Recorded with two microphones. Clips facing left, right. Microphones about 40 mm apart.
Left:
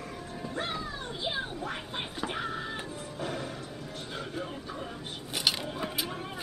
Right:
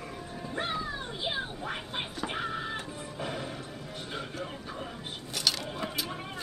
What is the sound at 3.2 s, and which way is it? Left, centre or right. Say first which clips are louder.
Music: left 1 dB; centre.